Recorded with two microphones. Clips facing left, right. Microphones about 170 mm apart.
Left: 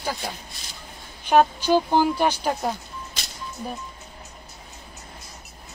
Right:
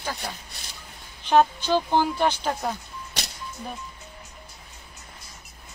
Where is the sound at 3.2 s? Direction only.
70° right (ahead or behind).